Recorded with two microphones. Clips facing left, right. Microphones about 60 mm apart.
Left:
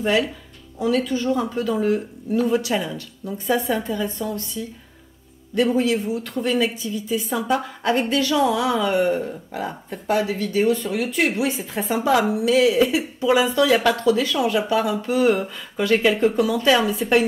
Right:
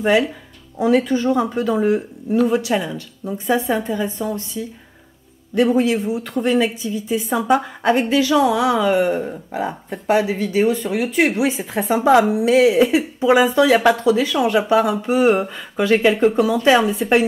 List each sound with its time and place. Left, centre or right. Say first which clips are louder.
0.0 s speech: right 4 dB; right
5.5 s speech: right 3 dB; right
6.0 s speech: right 3 dB; centre
6.3 s speech: right 4 dB; right; by 9.2 s centre
9.2 s speech: right 4 dB; centre
12.0 s speech: right 5 dB; centre
12.4 s speech: right 2 dB; right
12.7 s speech: right 4 dB; centre
13.2 s speech: right 4 dB; right; by 15.0 s centre
15.0 s speech: right 3 dB; right
15.8 s speech: right 3 dB; centre